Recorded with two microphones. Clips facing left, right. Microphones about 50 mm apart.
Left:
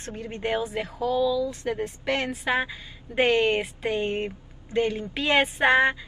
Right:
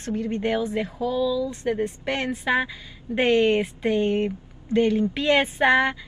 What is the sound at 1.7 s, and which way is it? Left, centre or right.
Speech, right.